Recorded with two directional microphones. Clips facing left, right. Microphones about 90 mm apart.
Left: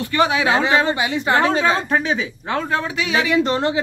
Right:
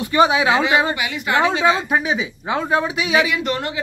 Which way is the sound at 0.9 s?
30° left (ahead or behind).